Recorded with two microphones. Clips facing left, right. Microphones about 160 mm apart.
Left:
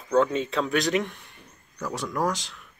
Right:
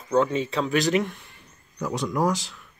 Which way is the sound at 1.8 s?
15° right (ahead or behind).